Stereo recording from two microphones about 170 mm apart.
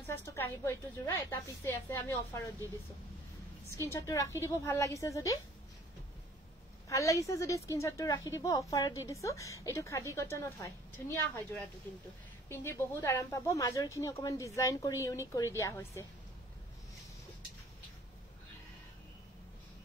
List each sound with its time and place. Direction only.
0.0 s speech: 15° left (ahead or behind)
3.8 s a woman's voice: 20° left (ahead or behind)
6.9 s a woman's voice: 20° left (ahead or behind)
12.4 s speech: 15° left (ahead or behind)